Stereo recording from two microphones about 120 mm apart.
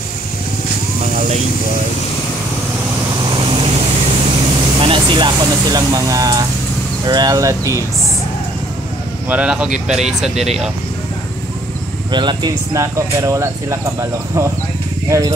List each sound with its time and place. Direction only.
3.2 s vehicle: 45° right (ahead or behind)
4.7 s speech: 45° right (ahead or behind); by 7.8 s 25° right (ahead or behind)
9.3 s speech: 10° right (ahead or behind)
12.1 s speech: 40° right (ahead or behind)
12.7 s speech: 25° right (ahead or behind)
15.0 s speech: 25° right (ahead or behind)